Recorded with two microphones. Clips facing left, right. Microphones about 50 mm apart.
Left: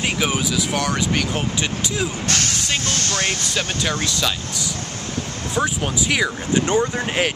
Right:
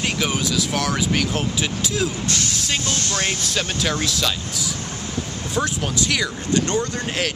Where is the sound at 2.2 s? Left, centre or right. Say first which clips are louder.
Left 2 dB; left.